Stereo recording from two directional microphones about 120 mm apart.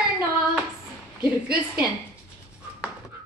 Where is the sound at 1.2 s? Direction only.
10° right (ahead or behind).